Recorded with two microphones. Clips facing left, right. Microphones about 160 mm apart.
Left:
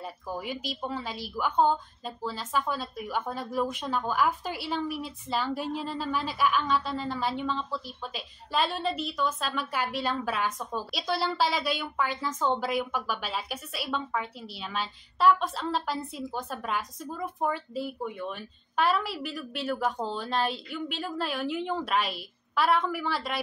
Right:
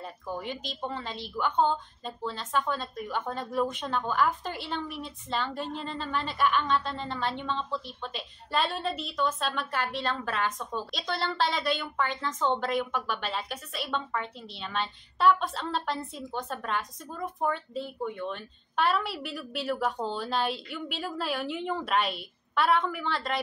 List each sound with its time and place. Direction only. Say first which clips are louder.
0.0 s speech: even; 5° left (ahead or behind)